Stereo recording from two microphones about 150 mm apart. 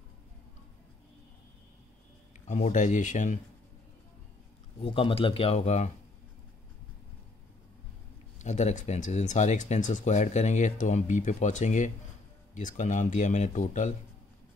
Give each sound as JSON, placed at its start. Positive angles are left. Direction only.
{"t": 2.4, "sound": "speech", "side_deg": 55}
{"t": 4.7, "sound": "speech", "side_deg": 35}
{"t": 8.4, "sound": "speech", "side_deg": 50}